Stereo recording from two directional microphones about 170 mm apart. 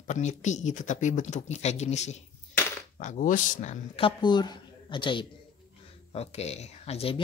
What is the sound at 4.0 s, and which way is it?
Speech, 30° left (ahead or behind).